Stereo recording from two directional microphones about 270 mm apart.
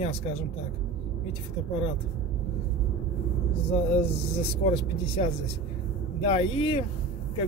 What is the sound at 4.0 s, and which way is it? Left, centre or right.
Speech, left.